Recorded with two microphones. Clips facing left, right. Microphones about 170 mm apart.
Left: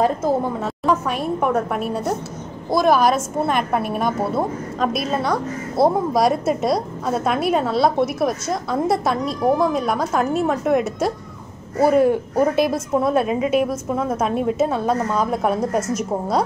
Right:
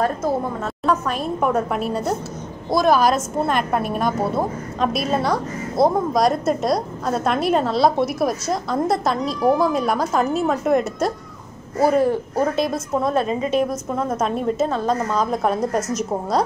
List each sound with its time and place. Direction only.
0.8 s a woman's voice: 10° left (ahead or behind)
1.4 s a woman's voice: centre (ahead or behind)